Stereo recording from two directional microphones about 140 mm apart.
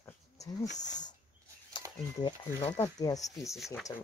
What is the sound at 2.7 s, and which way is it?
Speech, 25° left (ahead or behind).